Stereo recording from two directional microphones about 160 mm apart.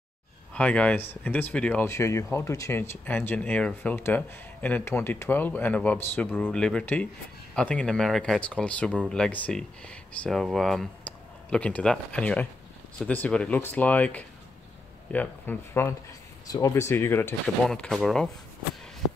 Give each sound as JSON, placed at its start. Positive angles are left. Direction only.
{"t": 0.6, "sound": "speech", "side_deg": 10}
{"t": 17.6, "sound": "speech", "side_deg": 5}